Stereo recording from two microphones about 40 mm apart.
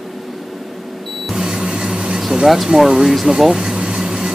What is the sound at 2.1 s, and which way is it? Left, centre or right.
Speech, centre.